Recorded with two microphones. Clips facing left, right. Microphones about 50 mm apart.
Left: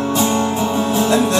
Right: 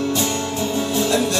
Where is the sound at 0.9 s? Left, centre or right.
Centre.